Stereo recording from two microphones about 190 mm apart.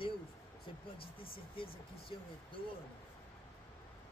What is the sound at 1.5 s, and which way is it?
Speech, 25° left (ahead or behind).